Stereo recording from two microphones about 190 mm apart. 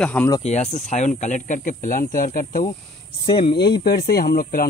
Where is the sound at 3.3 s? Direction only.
25° left (ahead or behind).